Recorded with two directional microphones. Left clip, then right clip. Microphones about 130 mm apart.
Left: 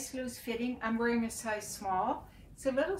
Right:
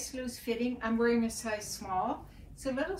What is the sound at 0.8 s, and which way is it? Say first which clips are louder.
A woman's voice: right 3 dB; 10° left (ahead or behind).